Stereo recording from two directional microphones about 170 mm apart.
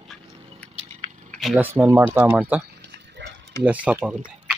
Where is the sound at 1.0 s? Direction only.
25° left (ahead or behind).